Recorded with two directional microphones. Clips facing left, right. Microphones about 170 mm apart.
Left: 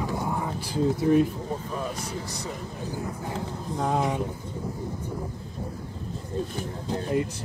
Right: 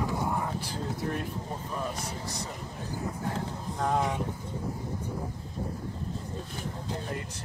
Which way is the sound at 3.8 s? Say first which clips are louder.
Left 2 dB; 5° left (ahead or behind).